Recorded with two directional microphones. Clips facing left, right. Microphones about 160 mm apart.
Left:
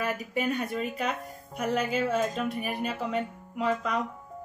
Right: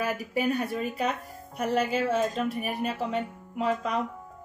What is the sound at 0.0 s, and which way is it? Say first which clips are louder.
Speech: right 2 dB; 5° right (ahead or behind).